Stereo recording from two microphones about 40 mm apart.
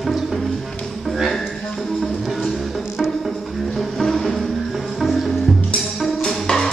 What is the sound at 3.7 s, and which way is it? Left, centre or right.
Music, centre.